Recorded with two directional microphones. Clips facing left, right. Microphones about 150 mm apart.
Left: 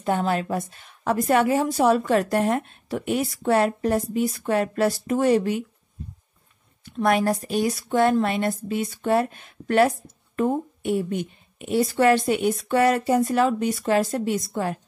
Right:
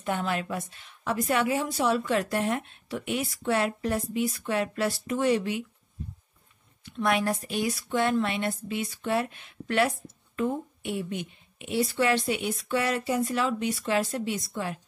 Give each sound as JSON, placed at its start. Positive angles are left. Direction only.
{"t": 0.0, "sound": "a woman's voice", "side_deg": 40}
{"t": 6.8, "sound": "a woman's voice", "side_deg": 45}